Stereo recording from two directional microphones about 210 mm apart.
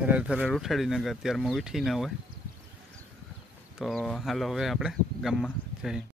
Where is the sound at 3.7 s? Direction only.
Centre (ahead or behind).